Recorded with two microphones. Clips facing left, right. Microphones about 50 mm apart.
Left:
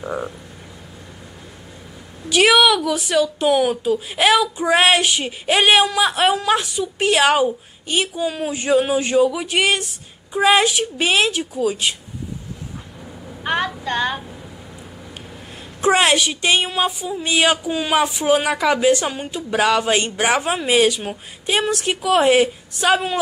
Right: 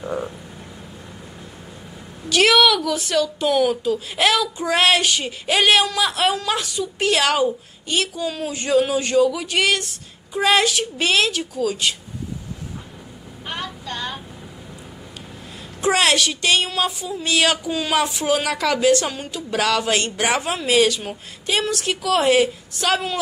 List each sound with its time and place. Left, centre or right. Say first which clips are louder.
0.0 s frog: left 1 dB; centre
2.2 s a woman's voice: left 1 dB; centre
13.4 s female singing: left 9 dB; left
15.8 s a woman's voice: left 2 dB; centre